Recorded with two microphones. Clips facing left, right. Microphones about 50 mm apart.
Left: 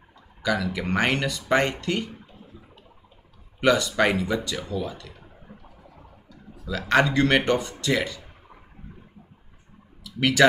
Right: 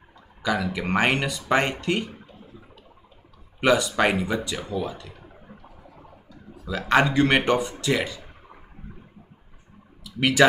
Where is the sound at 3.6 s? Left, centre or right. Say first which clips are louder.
Even; right.